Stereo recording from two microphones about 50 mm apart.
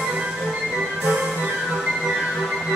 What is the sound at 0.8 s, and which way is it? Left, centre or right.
Music, centre.